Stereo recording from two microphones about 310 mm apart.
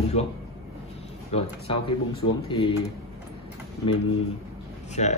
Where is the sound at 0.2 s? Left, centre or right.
Centre.